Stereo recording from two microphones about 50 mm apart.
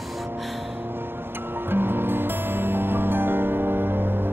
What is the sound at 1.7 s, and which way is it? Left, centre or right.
Music, right.